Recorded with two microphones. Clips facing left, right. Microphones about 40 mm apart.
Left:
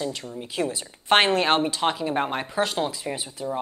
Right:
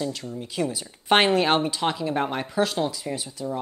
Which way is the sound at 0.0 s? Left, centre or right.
Centre.